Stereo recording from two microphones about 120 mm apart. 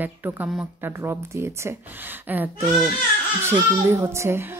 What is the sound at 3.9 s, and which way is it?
Speech, 20° right (ahead or behind).